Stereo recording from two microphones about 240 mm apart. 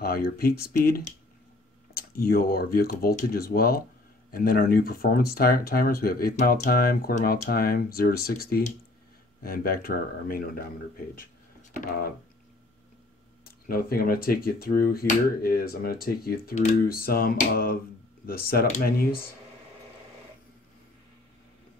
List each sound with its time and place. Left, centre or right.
0.0 s speech: left
13.7 s speech: left